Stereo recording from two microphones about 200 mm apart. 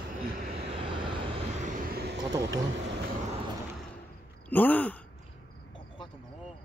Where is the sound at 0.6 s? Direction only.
25° right (ahead or behind); by 2.2 s 50° right (ahead or behind).